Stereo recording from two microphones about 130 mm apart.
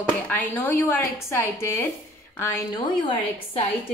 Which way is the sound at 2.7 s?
40° left (ahead or behind).